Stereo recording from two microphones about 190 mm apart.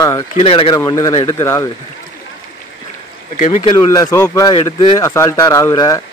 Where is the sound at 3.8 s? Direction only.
20° left (ahead or behind).